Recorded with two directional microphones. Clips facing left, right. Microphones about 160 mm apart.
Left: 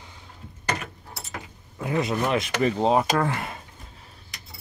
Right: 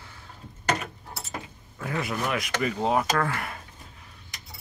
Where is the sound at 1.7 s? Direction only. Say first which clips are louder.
Left 5 dB; 20° left (ahead or behind).